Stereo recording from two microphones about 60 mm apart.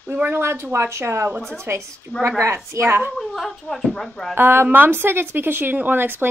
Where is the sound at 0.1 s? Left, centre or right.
Right.